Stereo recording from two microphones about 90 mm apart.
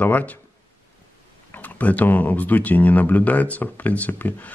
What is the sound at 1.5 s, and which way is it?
Speech, 15° left (ahead or behind).